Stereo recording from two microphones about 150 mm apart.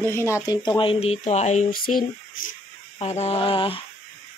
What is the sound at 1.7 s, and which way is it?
Speech, 75° left (ahead or behind).